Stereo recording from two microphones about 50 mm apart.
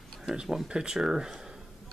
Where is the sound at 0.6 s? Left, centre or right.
Centre.